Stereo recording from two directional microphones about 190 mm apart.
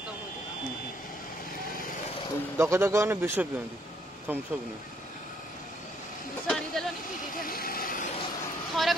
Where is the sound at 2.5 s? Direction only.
15° right (ahead or behind).